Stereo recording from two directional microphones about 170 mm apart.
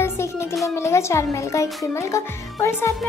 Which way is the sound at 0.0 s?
15° left (ahead or behind).